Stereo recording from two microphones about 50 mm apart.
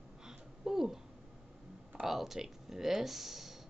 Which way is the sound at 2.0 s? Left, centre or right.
Centre.